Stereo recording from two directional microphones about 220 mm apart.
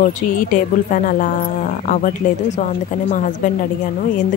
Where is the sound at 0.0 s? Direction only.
35° left (ahead or behind).